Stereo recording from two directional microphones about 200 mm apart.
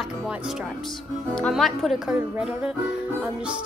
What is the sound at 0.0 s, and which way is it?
Music, centre (ahead or behind).